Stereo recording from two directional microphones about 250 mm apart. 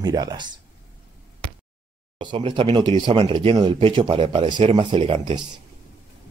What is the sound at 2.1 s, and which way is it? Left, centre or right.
Speech, centre.